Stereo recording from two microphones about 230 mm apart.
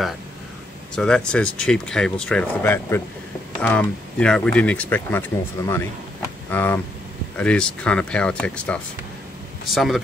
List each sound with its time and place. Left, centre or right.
0.9 s speech: centre